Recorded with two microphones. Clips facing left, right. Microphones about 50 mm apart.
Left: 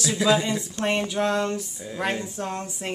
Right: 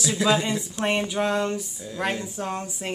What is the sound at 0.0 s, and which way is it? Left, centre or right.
Speech, centre.